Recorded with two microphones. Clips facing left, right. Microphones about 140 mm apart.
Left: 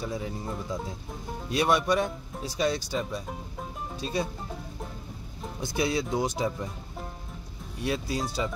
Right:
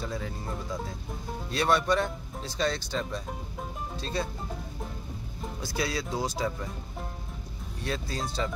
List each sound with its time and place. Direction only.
0.0 s speech: 15° left (ahead or behind)
1.5 s speech: 15° left (ahead or behind)
5.6 s speech: 20° left (ahead or behind)
7.8 s speech: 10° left (ahead or behind)